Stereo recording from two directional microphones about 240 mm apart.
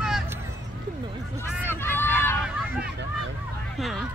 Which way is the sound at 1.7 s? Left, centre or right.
Centre.